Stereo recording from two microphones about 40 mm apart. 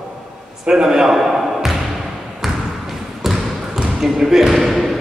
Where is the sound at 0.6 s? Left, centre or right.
Centre.